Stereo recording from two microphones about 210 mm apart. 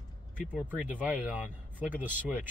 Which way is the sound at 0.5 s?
10° right (ahead or behind).